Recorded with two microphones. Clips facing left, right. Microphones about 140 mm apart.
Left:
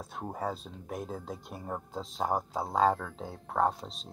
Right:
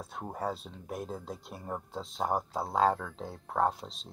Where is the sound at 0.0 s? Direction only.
Centre (ahead or behind).